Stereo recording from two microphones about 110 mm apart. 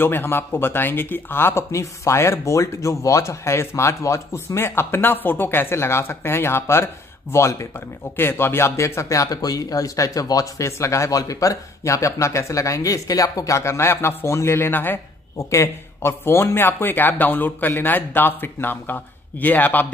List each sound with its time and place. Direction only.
0.0 s a man's voice: 20° left (ahead or behind)